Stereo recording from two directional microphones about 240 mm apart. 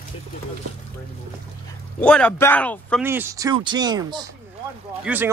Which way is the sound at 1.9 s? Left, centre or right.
Centre.